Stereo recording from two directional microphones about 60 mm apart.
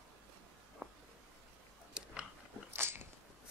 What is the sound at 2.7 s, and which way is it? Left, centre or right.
Biting, right.